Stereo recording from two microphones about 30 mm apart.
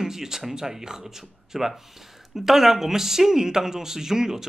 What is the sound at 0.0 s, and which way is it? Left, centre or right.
Speech, centre.